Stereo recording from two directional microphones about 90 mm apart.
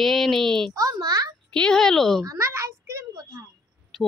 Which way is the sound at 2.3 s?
35° right (ahead or behind).